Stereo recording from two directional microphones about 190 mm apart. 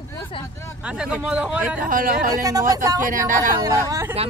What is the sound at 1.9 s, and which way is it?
Speech, 45° right (ahead or behind).